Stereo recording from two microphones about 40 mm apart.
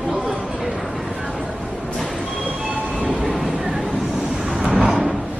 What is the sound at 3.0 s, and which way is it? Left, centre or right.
Train, centre.